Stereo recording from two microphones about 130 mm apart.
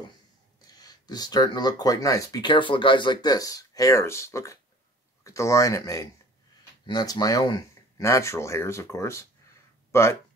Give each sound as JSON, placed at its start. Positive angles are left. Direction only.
{"t": 0.7, "sound": "speech", "side_deg": 30}